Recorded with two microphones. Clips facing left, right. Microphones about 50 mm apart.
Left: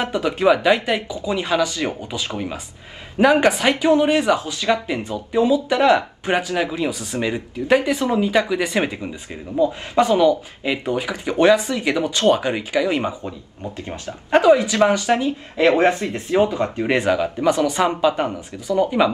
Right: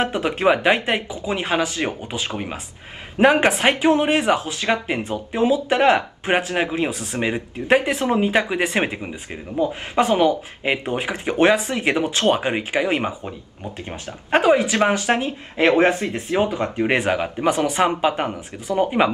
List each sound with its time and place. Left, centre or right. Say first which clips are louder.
0.0 s speech: left 1 dB; right